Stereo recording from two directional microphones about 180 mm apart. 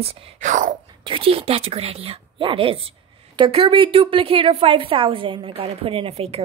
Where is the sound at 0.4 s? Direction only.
45° right (ahead or behind).